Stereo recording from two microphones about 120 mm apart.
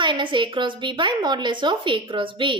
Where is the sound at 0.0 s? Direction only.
40° right (ahead or behind).